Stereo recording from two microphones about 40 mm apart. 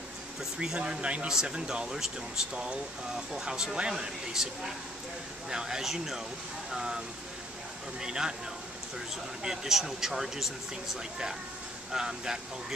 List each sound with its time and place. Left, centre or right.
0.7 s speech: right
8.0 s speech: centre